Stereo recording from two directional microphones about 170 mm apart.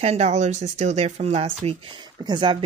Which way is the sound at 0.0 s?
40° right (ahead or behind).